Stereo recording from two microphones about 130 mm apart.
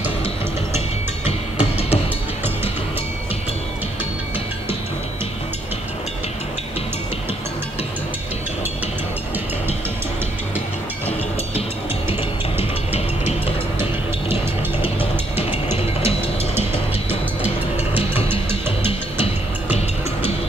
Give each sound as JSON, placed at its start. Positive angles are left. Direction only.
{"t": 0.7, "sound": "music", "side_deg": 55}
{"t": 12.1, "sound": "music", "side_deg": -15}
{"t": 17.1, "sound": "music", "side_deg": -15}